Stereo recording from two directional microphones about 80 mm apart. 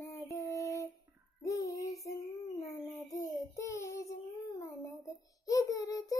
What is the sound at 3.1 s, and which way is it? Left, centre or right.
Child singing, left.